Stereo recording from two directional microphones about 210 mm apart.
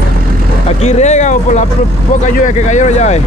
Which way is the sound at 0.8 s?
35° left (ahead or behind).